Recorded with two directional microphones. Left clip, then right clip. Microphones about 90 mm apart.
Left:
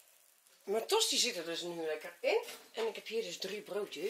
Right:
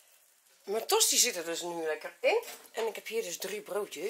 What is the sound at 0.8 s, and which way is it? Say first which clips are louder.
Speech: right 5 dB; 30° right (ahead or behind).